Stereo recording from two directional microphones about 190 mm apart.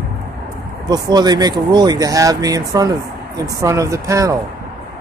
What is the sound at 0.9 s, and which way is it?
Speech, 20° right (ahead or behind).